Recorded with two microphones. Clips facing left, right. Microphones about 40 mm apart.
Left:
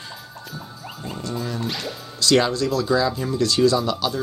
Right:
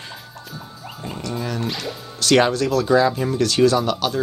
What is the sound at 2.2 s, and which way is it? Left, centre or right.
Speech, right.